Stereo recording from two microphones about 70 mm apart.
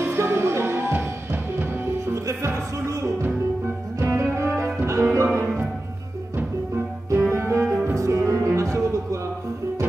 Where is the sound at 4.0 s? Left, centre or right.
Right.